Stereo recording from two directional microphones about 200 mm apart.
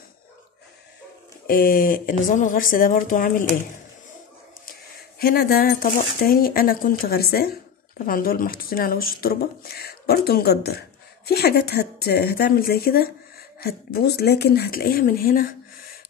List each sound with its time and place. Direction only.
1.5 s speech: 45° left (ahead or behind)
5.2 s speech: 50° left (ahead or behind)